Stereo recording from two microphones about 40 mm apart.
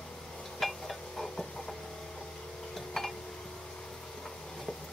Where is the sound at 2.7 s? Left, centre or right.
Centre.